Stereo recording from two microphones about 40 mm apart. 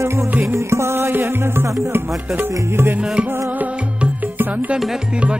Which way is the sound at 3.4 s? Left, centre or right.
Right.